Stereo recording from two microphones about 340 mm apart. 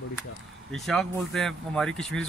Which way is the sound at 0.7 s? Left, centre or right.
Centre.